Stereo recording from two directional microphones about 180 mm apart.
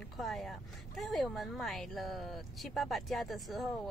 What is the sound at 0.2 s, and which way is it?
A woman's voice, centre (ahead or behind).